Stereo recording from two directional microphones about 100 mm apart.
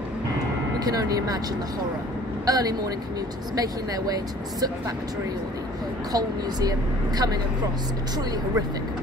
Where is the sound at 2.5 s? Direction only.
40° right (ahead or behind).